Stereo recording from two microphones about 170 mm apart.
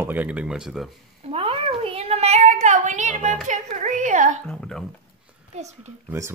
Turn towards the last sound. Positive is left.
turn(degrees=-15)  # may be behind; listen again after turning